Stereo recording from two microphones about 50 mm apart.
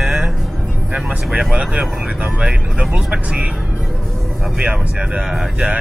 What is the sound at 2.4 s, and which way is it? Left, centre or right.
Speech, centre.